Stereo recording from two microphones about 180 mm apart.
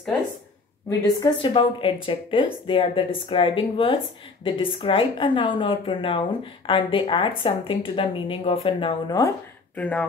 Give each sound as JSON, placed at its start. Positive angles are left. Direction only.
{"t": 0.8, "sound": "a woman's voice", "side_deg": 20}
{"t": 9.8, "sound": "speech", "side_deg": 5}